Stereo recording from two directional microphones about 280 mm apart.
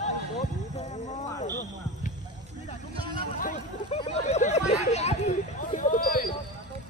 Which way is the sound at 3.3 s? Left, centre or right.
Left.